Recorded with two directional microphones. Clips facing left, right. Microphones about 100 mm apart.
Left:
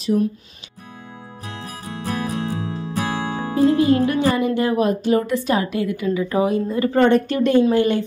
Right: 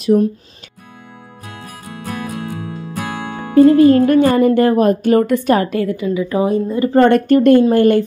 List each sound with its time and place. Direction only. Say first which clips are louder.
0.1 s speech: right 5 dB; 40° right (ahead or behind)
2.5 s music: left 1 dB; 20° left (ahead or behind)
4.0 s a woman's voice: right 7 dB; 50° right (ahead or behind)
5.9 s speech: right 3 dB; 20° right (ahead or behind)
7.0 s a woman's voice: right 6 dB; 55° right (ahead or behind)